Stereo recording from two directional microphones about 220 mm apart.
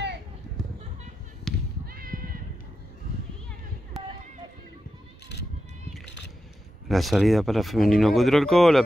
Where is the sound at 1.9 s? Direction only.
40° right (ahead or behind).